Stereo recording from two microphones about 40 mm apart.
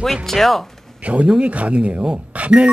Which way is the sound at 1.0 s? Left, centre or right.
Right.